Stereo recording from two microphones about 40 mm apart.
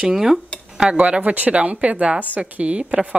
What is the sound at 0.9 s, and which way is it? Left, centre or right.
A woman's voice, right.